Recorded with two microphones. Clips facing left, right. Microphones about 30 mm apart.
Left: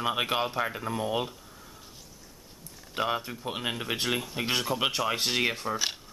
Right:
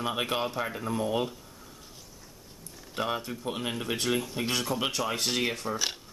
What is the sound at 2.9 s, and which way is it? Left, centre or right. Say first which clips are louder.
Speech: left 2 dB; centre.